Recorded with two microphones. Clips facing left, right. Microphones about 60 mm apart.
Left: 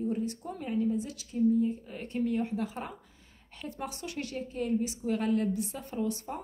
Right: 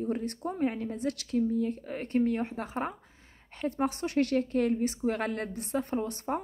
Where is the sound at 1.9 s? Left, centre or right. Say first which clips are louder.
Right 3 dB; right.